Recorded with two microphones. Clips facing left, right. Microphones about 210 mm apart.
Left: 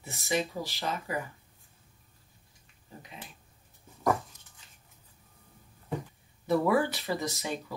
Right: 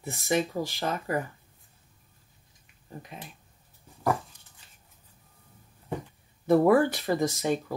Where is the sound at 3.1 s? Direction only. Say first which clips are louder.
Right 2 dB; 50° right (ahead or behind).